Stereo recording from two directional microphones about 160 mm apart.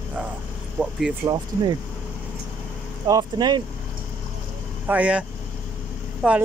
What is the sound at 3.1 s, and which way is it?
Speech, 25° right (ahead or behind).